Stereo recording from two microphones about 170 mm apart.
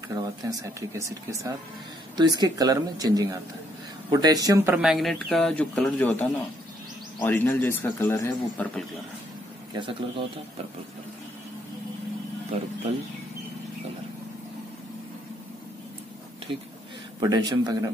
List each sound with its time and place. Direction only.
0.1 s speech: 20° right (ahead or behind)
4.8 s a man's voice: centre (ahead or behind)
9.8 s speech: 30° right (ahead or behind)
17.2 s speech: 25° right (ahead or behind)